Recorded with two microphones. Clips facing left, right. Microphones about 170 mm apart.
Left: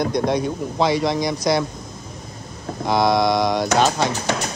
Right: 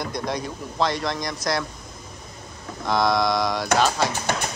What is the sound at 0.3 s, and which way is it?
Speech, centre (ahead or behind).